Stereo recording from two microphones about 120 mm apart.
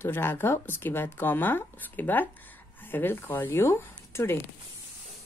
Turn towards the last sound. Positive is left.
turn(degrees=20)  # may be behind; listen again after turning